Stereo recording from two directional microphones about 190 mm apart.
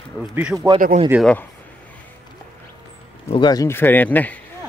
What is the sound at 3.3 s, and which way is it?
Speech, 20° left (ahead or behind).